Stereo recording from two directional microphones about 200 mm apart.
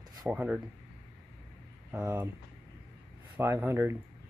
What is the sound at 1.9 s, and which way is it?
Speech, 10° right (ahead or behind).